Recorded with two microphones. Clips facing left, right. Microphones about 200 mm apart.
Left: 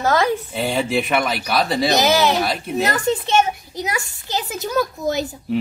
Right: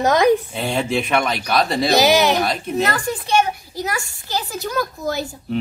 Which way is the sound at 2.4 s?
5° left (ahead or behind).